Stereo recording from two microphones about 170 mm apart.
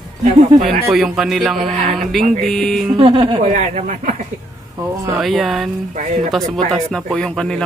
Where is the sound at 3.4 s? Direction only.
45° right (ahead or behind).